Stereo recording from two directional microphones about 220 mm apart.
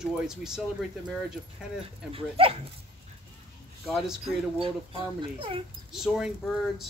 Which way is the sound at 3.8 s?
Centre (ahead or behind).